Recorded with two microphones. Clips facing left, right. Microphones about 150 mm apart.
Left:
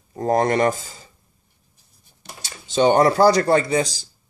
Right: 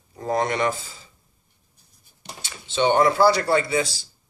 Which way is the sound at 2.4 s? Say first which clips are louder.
Left 4 dB; 40° left (ahead or behind).